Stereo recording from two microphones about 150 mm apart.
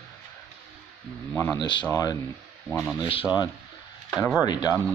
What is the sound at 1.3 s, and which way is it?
Speech, 15° left (ahead or behind).